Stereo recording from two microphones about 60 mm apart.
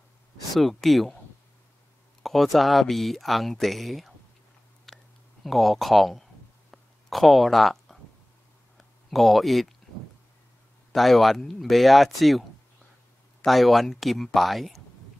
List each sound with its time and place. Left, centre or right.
0.6 s speech: centre
2.2 s speech: centre
4.8 s a sound: centre
11.0 s speech: centre
13.5 s speech: centre